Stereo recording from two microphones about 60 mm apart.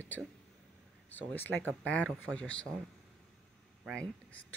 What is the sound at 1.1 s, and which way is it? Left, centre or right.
Speech, left.